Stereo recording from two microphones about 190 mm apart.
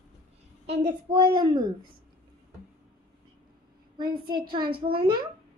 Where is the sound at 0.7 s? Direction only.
25° right (ahead or behind).